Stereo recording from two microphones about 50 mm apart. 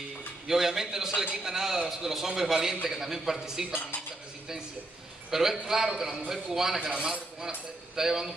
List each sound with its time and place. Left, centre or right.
0.5 s a man's voice: centre
3.7 s dishes: left
5.3 s a man's voice: centre
6.9 s speech: centre
7.3 s a man's voice: centre